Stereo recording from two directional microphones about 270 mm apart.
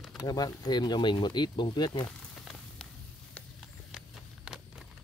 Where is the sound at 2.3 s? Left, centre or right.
Centre.